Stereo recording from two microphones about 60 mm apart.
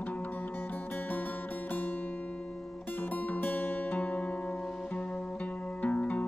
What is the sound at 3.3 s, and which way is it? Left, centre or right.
Music, left.